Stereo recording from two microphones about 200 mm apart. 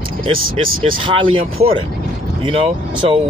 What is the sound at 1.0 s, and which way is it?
Speech, 25° right (ahead or behind).